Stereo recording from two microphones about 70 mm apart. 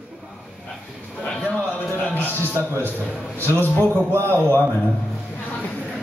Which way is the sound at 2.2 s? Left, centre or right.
Left.